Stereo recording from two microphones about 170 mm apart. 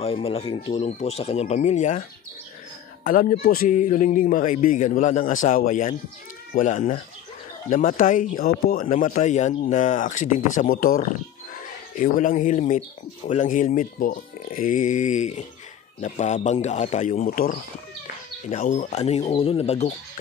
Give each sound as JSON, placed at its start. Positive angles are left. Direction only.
{"t": 0.0, "sound": "a man's voice", "side_deg": 35}
{"t": 8.8, "sound": "a man's voice", "side_deg": 45}